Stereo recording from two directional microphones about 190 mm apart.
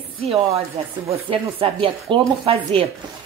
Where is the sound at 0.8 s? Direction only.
30° right (ahead or behind).